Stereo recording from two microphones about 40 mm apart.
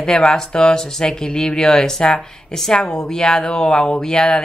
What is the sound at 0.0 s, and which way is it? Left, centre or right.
A woman's voice, centre.